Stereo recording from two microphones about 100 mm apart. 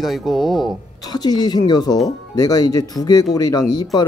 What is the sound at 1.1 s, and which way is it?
Speech, 40° left (ahead or behind).